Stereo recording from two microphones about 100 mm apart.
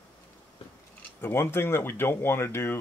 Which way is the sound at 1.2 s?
25° left (ahead or behind).